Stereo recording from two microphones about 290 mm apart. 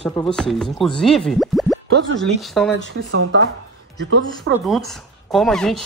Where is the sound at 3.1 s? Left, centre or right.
Right.